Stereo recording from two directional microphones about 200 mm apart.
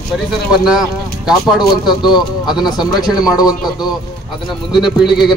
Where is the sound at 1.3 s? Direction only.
Centre (ahead or behind).